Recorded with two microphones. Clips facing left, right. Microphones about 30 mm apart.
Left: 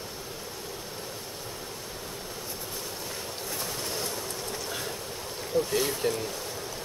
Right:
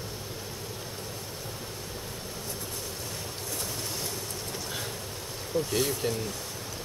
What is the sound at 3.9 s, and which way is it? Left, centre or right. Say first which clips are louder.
Vehicle: left 2 dB; centre.